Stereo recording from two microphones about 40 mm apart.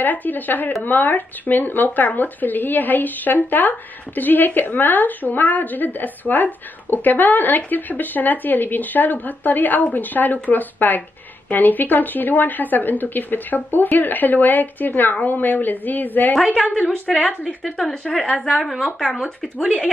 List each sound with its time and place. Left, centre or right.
0.0 s speech: left
16.5 s a woman's voice: left
18.3 s a woman's voice: left
18.6 s a woman's voice: centre